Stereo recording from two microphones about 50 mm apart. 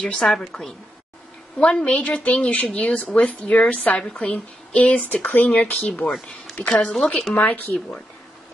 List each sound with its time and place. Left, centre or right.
0.0 s a woman's voice: centre
1.6 s a woman's voice: centre
5.0 s speech: left
6.7 s speech: centre
7.3 s speech: left